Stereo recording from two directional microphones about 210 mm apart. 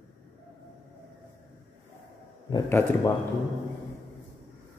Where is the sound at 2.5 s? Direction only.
20° left (ahead or behind).